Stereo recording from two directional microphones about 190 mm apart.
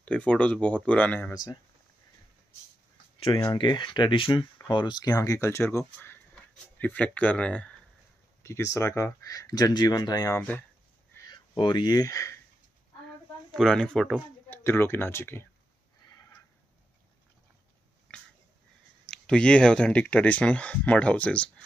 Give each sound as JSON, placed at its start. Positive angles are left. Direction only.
{"t": 0.0, "sound": "speech", "side_deg": 5}
{"t": 1.3, "sound": "speech", "side_deg": 20}
{"t": 3.2, "sound": "speech", "side_deg": 25}
{"t": 13.5, "sound": "speech", "side_deg": 0}
{"t": 18.1, "sound": "wheeze", "side_deg": 5}
{"t": 19.0, "sound": "speech", "side_deg": 5}